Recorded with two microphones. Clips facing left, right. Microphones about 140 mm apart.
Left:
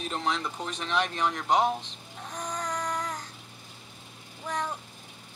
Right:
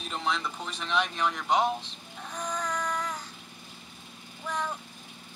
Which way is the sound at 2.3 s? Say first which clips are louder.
Right 1 dB; 20° left (ahead or behind).